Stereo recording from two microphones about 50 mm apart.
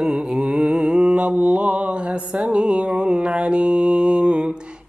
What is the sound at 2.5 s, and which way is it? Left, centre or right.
Mantra, centre.